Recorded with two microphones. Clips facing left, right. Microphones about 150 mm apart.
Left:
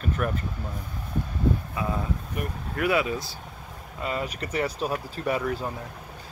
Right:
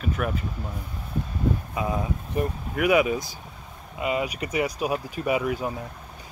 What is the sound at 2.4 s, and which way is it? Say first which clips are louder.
Speech: right 8 dB; 30° right (ahead or behind).